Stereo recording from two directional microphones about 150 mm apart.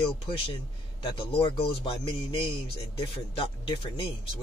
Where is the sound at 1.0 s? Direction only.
35° left (ahead or behind).